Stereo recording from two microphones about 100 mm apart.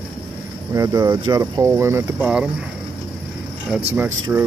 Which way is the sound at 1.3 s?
35° right (ahead or behind).